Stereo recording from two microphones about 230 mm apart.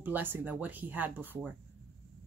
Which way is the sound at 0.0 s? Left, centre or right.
Centre.